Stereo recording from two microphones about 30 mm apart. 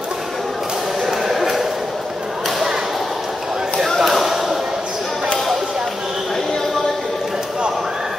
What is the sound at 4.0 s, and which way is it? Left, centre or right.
Basketball bounce, centre.